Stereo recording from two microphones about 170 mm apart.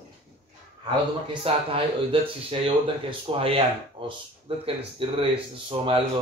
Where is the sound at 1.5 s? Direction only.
35° right (ahead or behind).